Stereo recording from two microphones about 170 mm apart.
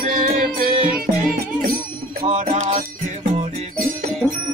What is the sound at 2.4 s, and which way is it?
Music, 45° right (ahead or behind).